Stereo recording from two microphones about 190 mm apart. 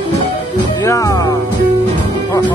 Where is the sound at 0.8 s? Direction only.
15° left (ahead or behind).